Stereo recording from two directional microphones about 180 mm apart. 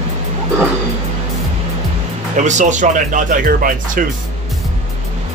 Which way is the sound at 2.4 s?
40° right (ahead or behind).